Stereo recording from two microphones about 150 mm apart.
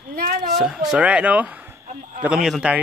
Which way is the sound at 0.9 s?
10° right (ahead or behind).